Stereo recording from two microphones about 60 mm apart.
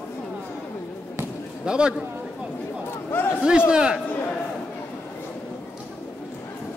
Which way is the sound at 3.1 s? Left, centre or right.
Left.